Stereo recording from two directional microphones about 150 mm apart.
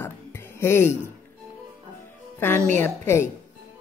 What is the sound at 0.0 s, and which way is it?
Music, 15° left (ahead or behind).